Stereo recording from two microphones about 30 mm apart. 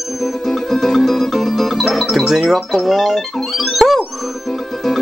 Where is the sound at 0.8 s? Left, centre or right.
Centre.